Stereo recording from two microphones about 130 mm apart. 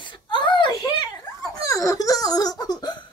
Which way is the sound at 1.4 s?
25° left (ahead or behind).